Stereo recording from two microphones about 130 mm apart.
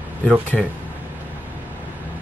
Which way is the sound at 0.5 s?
Centre (ahead or behind).